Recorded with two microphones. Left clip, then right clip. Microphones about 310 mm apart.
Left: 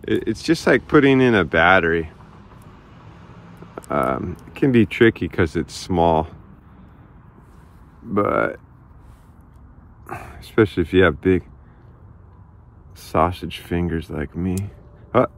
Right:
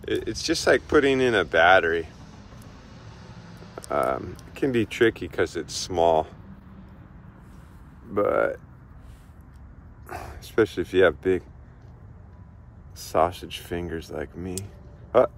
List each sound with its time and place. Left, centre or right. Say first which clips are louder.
0.0 s speech: left 5 dB; centre
3.9 s speech: left 4 dB; centre
8.1 s speech: left 3 dB; centre
10.3 s speech: left 5 dB; centre
13.2 s speech: left 3 dB; left